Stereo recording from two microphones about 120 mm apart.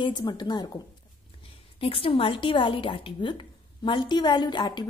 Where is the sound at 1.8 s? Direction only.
50° left (ahead or behind).